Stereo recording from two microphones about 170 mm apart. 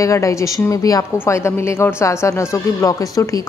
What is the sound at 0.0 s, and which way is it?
A woman's voice, 20° left (ahead or behind).